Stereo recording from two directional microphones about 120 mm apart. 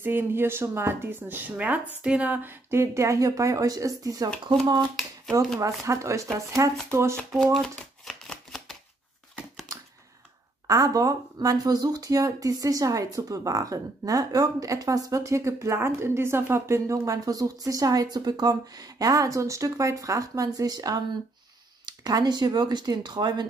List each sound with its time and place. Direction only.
0.0 s speech: 20° right (ahead or behind); by 4.8 s 35° right (ahead or behind)
5.6 s speech: 25° right (ahead or behind)
7.5 s shuffling cards: centre (ahead or behind)
10.7 s speech: 30° right (ahead or behind)